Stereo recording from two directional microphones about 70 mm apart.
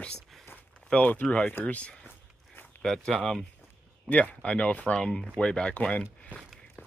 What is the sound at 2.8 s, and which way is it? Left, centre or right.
Speech, centre.